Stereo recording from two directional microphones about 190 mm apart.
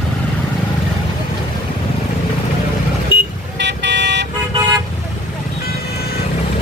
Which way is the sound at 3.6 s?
65° right (ahead or behind).